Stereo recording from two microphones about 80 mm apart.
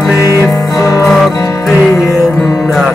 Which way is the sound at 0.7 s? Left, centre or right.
Left.